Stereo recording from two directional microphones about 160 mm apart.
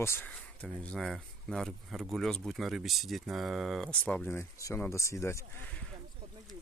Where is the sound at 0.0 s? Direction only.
15° left (ahead or behind).